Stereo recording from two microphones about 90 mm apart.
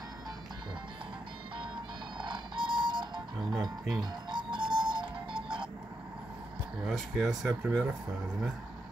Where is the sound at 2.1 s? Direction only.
60° right (ahead or behind).